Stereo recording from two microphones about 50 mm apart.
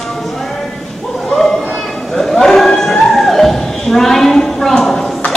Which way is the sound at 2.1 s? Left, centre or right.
Centre.